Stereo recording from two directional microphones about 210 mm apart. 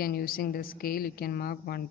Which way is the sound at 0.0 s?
45° left (ahead or behind).